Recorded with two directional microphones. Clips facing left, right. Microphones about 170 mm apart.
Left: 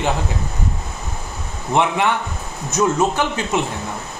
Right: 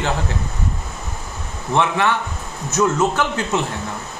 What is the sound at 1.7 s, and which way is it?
A man's voice, 15° left (ahead or behind).